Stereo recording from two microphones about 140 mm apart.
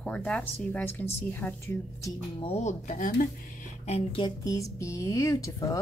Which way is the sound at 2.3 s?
45° left (ahead or behind).